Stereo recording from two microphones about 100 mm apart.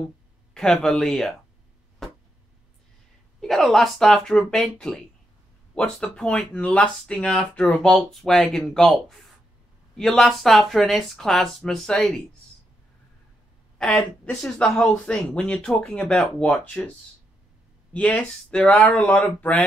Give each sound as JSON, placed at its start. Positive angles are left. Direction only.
{"t": 0.6, "sound": "speech", "side_deg": 5}
{"t": 2.0, "sound": "a sound", "side_deg": 0}
{"t": 3.3, "sound": "speech", "side_deg": 5}
{"t": 14.6, "sound": "speech", "side_deg": 10}
{"t": 17.9, "sound": "speech", "side_deg": 10}
{"t": 18.9, "sound": "speech", "side_deg": 15}